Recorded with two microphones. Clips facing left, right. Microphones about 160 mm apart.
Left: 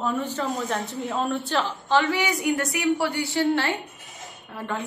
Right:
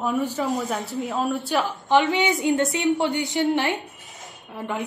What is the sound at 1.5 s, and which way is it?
A woman's voice, 15° right (ahead or behind).